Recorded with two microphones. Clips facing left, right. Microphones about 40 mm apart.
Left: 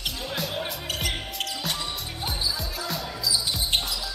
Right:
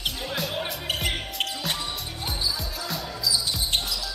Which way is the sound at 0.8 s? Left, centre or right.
Right.